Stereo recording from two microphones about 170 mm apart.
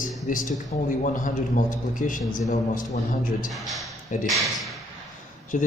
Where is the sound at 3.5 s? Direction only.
Centre (ahead or behind).